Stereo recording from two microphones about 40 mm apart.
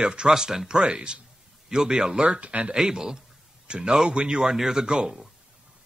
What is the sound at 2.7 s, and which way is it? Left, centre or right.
Speech, centre.